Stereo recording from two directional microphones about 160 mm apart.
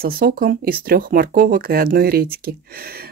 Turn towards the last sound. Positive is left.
turn(degrees=-70)  # may be behind; listen again after turning